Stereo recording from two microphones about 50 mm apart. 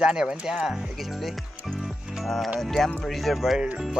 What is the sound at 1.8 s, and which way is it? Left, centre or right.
Music, centre.